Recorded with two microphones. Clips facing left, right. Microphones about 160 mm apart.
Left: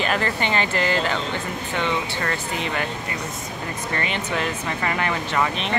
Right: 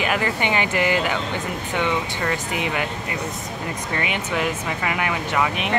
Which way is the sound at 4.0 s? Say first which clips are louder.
Right 2 dB; 10° right (ahead or behind).